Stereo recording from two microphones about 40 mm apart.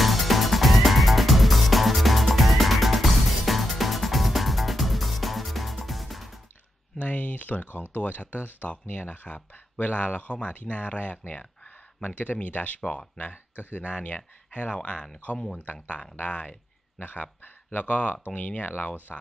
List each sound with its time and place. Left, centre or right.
0.0 s music: centre
7.0 s a sound: left
7.9 s speech: left
15.5 s speech: left